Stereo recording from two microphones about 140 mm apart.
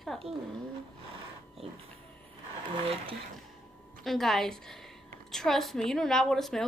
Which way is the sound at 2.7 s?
40° right (ahead or behind).